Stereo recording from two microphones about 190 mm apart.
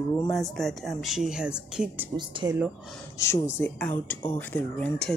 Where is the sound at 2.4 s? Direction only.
20° right (ahead or behind).